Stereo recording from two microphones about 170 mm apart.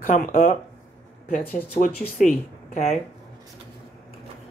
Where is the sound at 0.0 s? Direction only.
55° left (ahead or behind).